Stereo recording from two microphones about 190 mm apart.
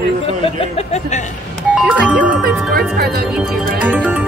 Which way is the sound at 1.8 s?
5° right (ahead or behind).